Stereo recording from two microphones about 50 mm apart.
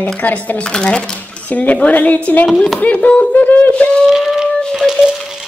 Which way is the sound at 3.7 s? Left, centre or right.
Left.